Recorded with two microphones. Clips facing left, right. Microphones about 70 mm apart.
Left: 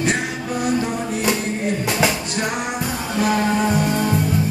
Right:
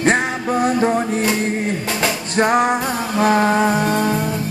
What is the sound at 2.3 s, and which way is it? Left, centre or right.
Music, right.